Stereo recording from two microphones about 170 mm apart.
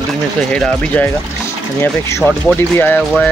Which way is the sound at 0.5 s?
10° left (ahead or behind).